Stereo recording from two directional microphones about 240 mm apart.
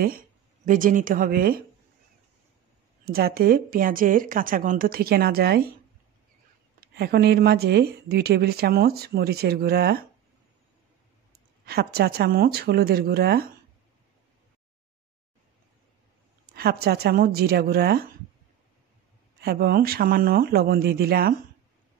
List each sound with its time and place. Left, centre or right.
0.0 s speech: right
3.1 s speech: right
6.8 s speech: right
11.6 s speech: right
16.5 s speech: right
19.4 s speech: right